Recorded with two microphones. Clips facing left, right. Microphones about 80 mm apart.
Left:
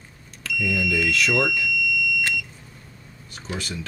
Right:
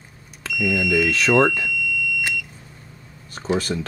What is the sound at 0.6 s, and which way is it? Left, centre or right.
Speech, right.